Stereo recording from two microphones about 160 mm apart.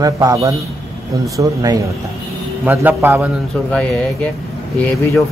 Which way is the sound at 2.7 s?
10° right (ahead or behind).